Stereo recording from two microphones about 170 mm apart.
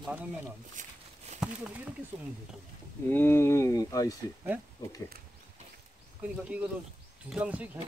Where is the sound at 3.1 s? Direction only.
15° left (ahead or behind).